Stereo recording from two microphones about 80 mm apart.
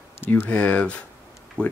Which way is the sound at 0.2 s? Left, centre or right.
Left.